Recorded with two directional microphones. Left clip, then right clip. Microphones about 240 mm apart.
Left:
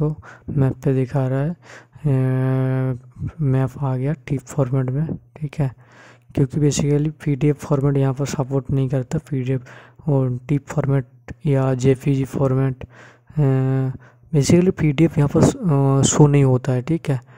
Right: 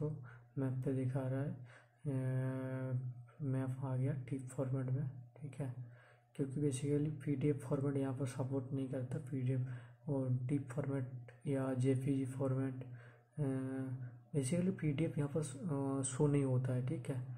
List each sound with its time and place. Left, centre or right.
0.6 s speech: left
6.3 s speech: left